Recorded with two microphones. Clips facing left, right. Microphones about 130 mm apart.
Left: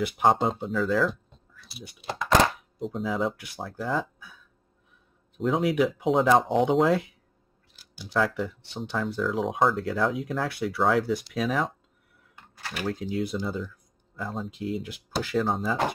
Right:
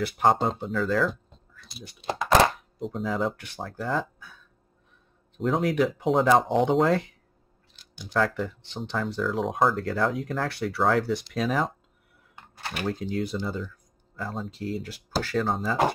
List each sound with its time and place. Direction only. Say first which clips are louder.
0.2 s speech: even; centre (ahead or behind)
5.4 s speech: even; centre (ahead or behind)
7.7 s a sound: even; 10° left (ahead or behind)
8.4 s speech: even; 10° left (ahead or behind)
12.5 s typing: right 1 dB; 25° right (ahead or behind)
13.0 s speech: even; 5° left (ahead or behind)
14.8 s speech: right 1 dB; 15° left (ahead or behind)
15.4 s speech: even; centre (ahead or behind)